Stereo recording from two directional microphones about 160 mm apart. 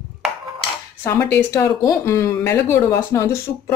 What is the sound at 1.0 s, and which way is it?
Speech, 15° left (ahead or behind).